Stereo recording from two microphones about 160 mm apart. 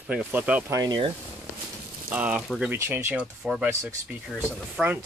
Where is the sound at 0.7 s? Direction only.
25° right (ahead or behind).